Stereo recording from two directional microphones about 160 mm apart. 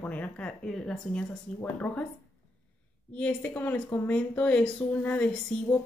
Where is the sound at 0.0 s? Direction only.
10° left (ahead or behind).